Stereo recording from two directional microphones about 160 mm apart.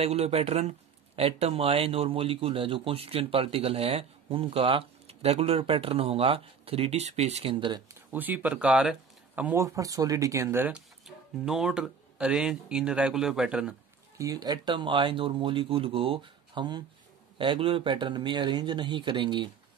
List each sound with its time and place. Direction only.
0.0 s speech: 40° right (ahead or behind)
7.6 s speech: 25° right (ahead or behind)
8.1 s speech: 10° right (ahead or behind)
14.1 s speech: 20° right (ahead or behind)